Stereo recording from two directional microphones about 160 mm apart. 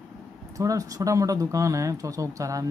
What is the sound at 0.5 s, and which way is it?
Speech, 20° right (ahead or behind).